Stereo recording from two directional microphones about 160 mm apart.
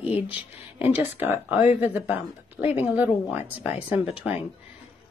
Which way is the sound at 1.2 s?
10° right (ahead or behind).